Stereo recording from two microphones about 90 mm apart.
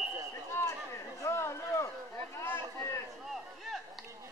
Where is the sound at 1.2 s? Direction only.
30° left (ahead or behind).